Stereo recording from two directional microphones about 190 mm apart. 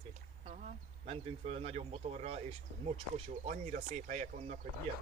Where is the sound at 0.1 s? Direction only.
40° right (ahead or behind).